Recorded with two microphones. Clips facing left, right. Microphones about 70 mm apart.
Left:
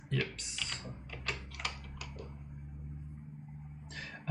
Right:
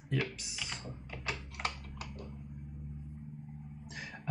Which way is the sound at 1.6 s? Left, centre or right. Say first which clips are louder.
Right 5 dB; right.